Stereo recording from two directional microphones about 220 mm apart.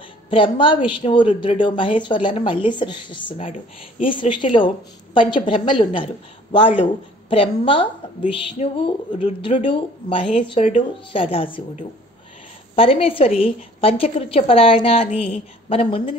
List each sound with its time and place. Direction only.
0.3 s a woman's voice: 25° left (ahead or behind)